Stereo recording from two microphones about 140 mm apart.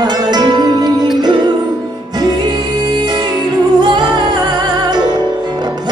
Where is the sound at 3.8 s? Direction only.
30° right (ahead or behind).